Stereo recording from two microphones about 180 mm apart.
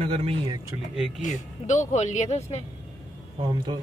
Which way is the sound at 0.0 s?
35° right (ahead or behind).